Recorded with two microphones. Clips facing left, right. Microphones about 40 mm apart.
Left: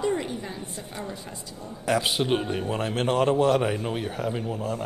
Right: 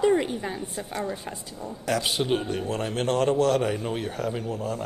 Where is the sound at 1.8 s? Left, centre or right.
Centre.